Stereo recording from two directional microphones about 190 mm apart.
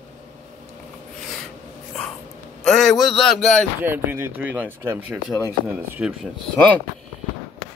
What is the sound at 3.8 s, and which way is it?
Speech, 10° right (ahead or behind).